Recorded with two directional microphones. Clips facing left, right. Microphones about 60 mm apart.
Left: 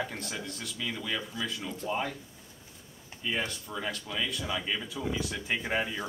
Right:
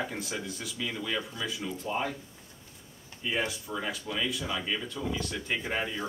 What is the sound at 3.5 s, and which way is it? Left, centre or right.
Speech, centre.